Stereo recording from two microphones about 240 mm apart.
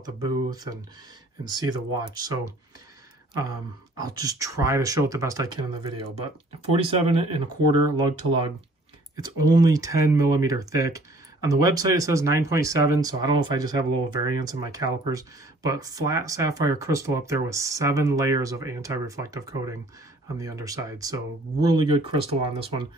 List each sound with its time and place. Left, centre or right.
0.0 s speech: centre
4.0 s speech: centre
9.1 s speech: centre